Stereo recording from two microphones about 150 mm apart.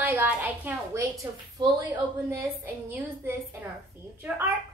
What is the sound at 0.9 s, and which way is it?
Speech, 20° right (ahead or behind).